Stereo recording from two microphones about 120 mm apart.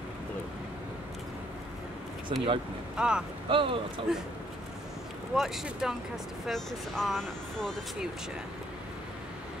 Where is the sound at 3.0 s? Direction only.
5° right (ahead or behind).